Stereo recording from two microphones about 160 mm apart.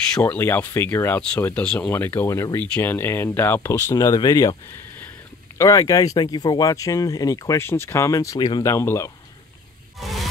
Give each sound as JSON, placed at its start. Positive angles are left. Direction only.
{"t": 0.1, "sound": "speech", "side_deg": 10}
{"t": 5.6, "sound": "speech", "side_deg": 20}
{"t": 9.9, "sound": "a sound", "side_deg": 0}